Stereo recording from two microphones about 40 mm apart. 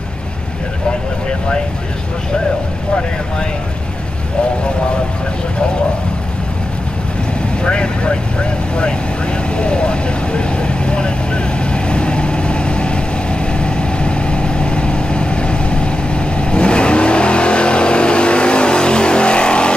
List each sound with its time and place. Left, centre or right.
7.6 s speech: left
9.6 s vehicle: left